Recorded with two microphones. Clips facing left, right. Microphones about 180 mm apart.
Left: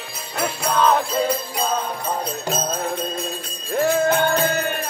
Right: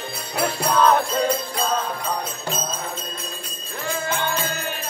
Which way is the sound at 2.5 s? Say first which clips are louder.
Left 6 dB; 45° left (ahead or behind).